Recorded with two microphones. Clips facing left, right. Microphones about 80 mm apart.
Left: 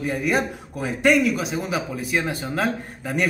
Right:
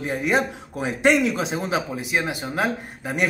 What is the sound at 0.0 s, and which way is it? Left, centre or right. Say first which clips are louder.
A man's voice: even; right.